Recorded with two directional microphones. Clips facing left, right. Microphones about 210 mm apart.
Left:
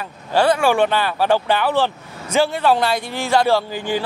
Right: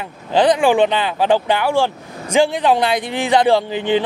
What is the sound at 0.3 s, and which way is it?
A man's voice, 15° right (ahead or behind).